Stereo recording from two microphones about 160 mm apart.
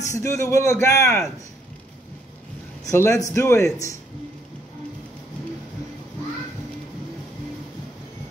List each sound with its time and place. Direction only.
0.0 s a man's voice: 20° left (ahead or behind)
2.9 s a man's voice: 20° left (ahead or behind)